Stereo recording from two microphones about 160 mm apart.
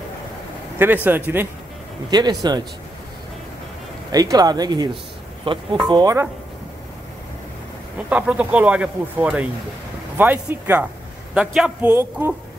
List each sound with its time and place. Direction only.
0.7 s speech: 10° right (ahead or behind)
2.0 s speech: 25° right (ahead or behind)
4.1 s speech: 25° right (ahead or behind)
8.1 s speech: 10° right (ahead or behind)